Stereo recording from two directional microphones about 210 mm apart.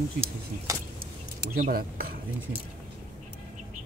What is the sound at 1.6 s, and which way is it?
Speech, 45° right (ahead or behind).